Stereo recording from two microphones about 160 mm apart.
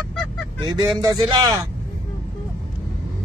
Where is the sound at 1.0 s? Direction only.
25° right (ahead or behind).